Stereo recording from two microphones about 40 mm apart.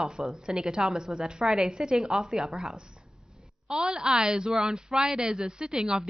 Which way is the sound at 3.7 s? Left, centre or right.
Centre.